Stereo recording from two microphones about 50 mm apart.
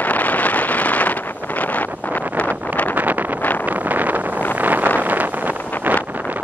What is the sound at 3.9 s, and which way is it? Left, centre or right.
Wind noise, right.